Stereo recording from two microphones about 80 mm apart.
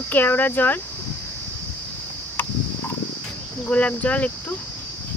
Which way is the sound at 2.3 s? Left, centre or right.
Left.